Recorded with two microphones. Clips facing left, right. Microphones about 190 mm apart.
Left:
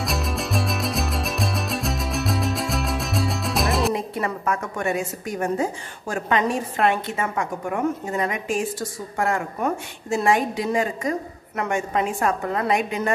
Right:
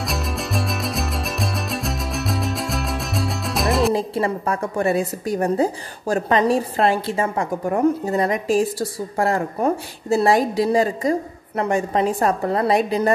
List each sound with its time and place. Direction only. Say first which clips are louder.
0.0 s music: even; centre (ahead or behind)
3.9 s a woman's voice: right 5 dB; 30° right (ahead or behind)